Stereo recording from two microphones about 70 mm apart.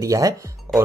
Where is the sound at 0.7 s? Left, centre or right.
Right.